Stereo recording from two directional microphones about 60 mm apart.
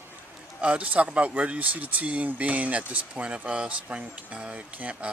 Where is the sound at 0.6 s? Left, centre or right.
Right.